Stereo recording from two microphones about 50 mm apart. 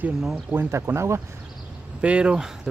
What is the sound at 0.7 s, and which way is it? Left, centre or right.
Speech, right.